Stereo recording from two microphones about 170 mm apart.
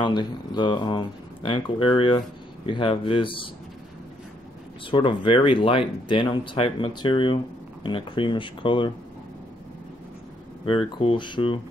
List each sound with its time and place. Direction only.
0.0 s speech: 25° left (ahead or behind)
4.9 s speech: 30° left (ahead or behind)
10.9 s speech: 30° left (ahead or behind)